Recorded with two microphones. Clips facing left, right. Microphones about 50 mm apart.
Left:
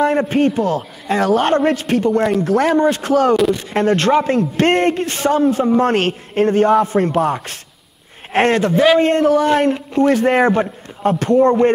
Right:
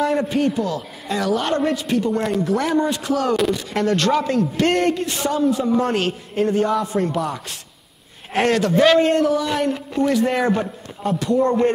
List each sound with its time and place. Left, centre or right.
0.0 s a man's voice: left
3.5 s a man's voice: left
8.7 s a man's voice: centre
9.0 s a man's voice: left
9.3 s a man's voice: left